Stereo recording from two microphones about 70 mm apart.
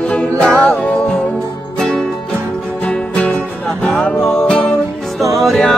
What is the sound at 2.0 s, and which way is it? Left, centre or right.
Music, right.